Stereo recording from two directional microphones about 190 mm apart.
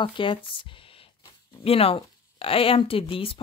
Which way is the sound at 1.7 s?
30° left (ahead or behind).